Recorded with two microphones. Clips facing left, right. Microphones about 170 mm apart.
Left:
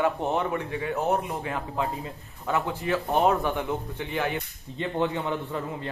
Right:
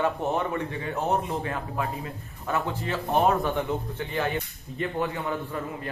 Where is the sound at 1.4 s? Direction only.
15° left (ahead or behind).